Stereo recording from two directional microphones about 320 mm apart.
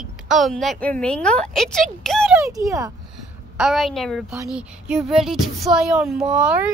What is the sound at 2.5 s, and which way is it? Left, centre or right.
A woman's voice, centre.